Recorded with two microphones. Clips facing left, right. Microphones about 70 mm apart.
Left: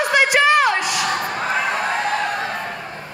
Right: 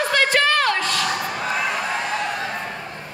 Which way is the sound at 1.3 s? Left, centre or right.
Left.